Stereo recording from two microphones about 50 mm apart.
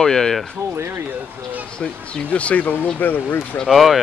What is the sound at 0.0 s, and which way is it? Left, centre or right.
Speech, centre.